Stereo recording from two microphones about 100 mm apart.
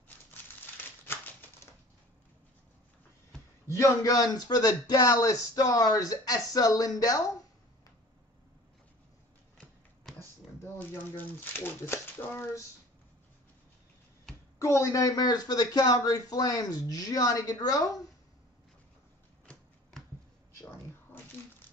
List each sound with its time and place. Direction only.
0.3 s crumpling: 20° left (ahead or behind)
3.6 s speech: 30° left (ahead or behind)
10.1 s speech: 25° left (ahead or behind)
14.6 s speech: 30° left (ahead or behind)